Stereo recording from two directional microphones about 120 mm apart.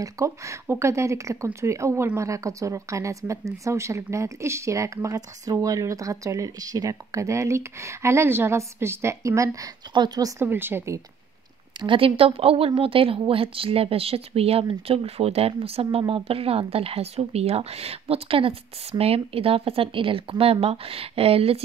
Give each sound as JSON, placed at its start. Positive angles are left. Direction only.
{"t": 0.0, "sound": "speech", "side_deg": -25}
{"t": 10.4, "sound": "speech", "side_deg": -15}
{"t": 11.8, "sound": "a woman's voice", "side_deg": -45}